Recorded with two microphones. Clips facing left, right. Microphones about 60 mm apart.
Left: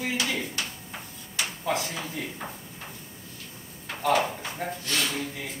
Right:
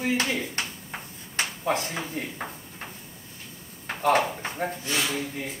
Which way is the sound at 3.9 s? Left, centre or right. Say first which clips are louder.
Right 2 dB; right.